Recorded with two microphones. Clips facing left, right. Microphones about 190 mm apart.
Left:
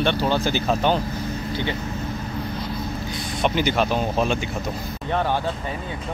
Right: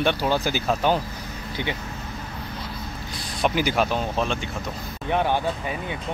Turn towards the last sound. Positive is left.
turn(degrees=-15)  # may be behind; listen again after turning